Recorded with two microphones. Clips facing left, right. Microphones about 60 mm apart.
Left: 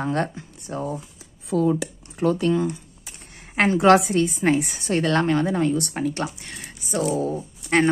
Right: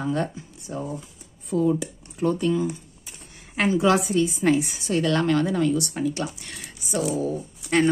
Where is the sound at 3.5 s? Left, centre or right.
Left.